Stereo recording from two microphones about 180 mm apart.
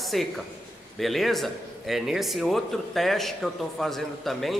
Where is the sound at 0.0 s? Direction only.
Centre (ahead or behind).